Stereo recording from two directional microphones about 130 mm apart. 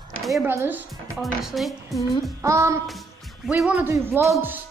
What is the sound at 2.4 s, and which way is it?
Music, 25° right (ahead or behind).